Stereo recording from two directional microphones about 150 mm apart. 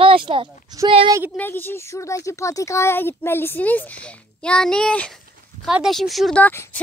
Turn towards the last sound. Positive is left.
turn(degrees=15)  # may be behind; listen again after turning